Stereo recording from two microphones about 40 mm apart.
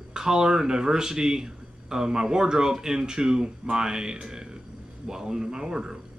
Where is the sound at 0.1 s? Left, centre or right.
Centre.